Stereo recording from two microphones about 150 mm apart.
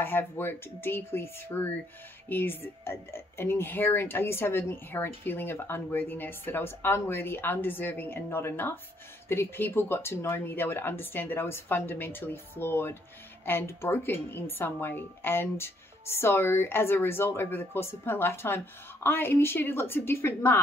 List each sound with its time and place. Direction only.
0.0 s speech: 15° left (ahead or behind)